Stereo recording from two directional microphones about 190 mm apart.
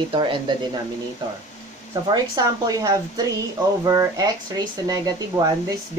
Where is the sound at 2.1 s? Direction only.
20° right (ahead or behind).